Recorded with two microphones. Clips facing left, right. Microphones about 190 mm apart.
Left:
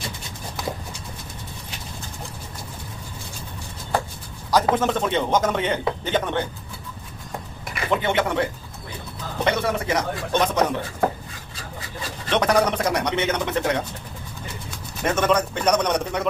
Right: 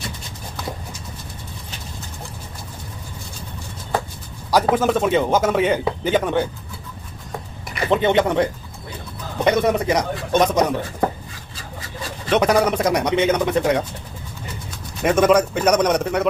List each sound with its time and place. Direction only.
4.5 s speech: 10° right (ahead or behind)
7.9 s speech: 20° right (ahead or behind)
12.3 s speech: 10° right (ahead or behind)
15.0 s speech: 10° right (ahead or behind)